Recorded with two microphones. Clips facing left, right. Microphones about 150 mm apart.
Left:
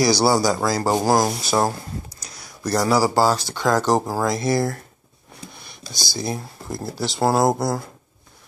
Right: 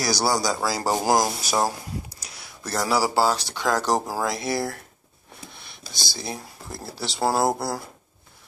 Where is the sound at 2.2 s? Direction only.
5° right (ahead or behind).